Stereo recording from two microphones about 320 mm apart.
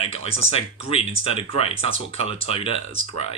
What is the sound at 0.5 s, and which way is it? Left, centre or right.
Speech, centre.